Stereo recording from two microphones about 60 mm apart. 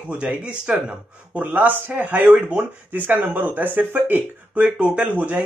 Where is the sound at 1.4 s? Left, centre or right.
Right.